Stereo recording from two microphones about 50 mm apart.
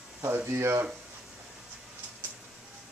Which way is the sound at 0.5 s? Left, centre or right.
Right.